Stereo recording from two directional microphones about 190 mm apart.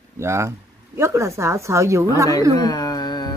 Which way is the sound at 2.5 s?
20° left (ahead or behind).